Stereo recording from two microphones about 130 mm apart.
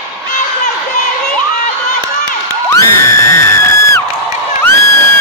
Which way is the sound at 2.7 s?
20° left (ahead or behind).